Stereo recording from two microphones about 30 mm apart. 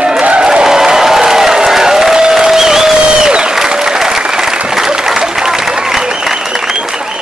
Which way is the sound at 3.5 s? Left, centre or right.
Centre.